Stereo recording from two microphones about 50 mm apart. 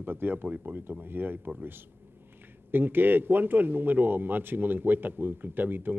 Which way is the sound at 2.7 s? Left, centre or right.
Right.